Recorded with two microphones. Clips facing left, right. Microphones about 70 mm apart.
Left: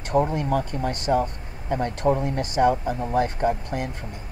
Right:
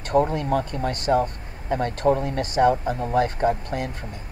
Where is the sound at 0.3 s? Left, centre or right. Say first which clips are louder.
Right 1 dB; right.